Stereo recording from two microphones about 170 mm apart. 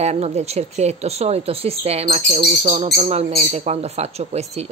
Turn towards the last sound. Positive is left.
turn(degrees=-40)  # may be behind; listen again after turning